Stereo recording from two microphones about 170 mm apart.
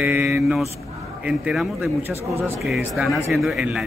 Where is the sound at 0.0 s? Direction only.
5° right (ahead or behind).